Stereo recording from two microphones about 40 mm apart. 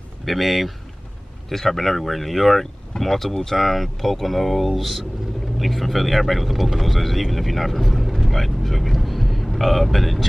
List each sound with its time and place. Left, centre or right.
0.2 s speech: centre